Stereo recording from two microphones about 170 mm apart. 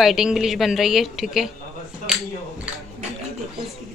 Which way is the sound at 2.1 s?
5° right (ahead or behind).